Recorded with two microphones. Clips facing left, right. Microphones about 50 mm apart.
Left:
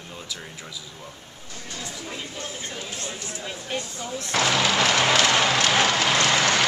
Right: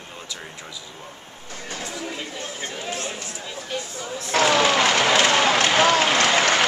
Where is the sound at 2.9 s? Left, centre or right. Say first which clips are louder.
Right 5 dB; right.